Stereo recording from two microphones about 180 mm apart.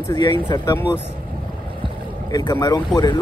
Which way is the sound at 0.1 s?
25° left (ahead or behind).